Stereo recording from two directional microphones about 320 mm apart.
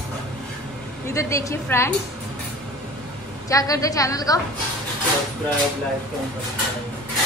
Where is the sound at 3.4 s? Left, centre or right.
Centre.